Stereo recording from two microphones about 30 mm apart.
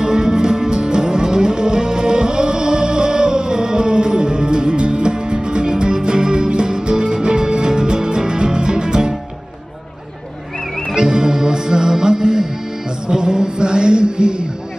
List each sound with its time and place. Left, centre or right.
0.0 s music: right
11.0 s music: right
13.1 s a sound: right